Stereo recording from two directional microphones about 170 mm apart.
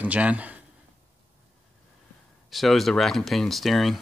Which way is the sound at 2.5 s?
Centre (ahead or behind).